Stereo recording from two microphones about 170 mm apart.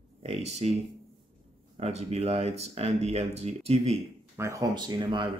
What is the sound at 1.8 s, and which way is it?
Speech, 40° right (ahead or behind).